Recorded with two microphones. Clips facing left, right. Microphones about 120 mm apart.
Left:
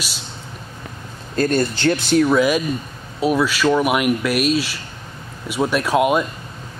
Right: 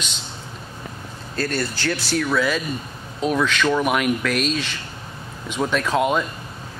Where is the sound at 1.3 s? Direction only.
20° left (ahead or behind).